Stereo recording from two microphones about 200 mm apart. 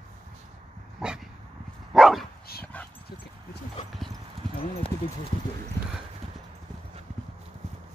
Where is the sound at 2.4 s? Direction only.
50° left (ahead or behind).